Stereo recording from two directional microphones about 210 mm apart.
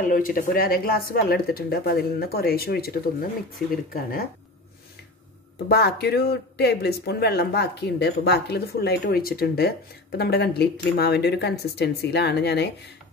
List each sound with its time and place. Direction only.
0.1 s speech: 45° left (ahead or behind)
5.7 s speech: 50° left (ahead or behind)